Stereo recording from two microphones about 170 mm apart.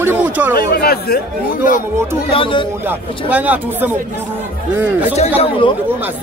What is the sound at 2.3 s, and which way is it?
Speech, 30° left (ahead or behind).